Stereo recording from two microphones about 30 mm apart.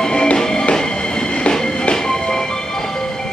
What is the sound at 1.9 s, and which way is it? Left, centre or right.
Music, left.